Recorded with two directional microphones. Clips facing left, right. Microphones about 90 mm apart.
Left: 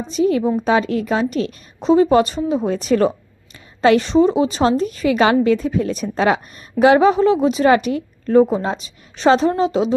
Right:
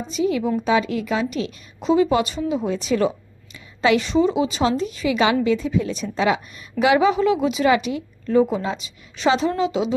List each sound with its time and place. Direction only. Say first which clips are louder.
0.1 s a woman's voice: left 4 dB; 40° left (ahead or behind)